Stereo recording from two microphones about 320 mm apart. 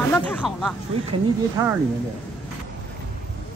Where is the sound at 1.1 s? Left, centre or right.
Centre.